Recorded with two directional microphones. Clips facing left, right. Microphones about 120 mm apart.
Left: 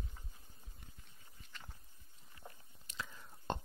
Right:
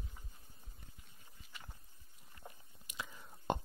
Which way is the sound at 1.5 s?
10° right (ahead or behind).